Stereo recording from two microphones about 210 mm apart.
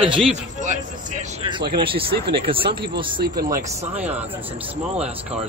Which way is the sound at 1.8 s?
25° right (ahead or behind).